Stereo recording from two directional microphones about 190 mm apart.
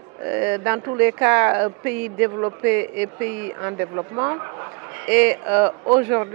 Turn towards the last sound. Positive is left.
turn(degrees=-15)  # may be behind; listen again after turning